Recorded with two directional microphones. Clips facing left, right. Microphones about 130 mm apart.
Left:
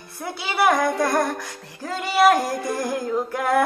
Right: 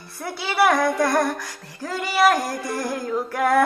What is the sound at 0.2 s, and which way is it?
Speech, 20° left (ahead or behind).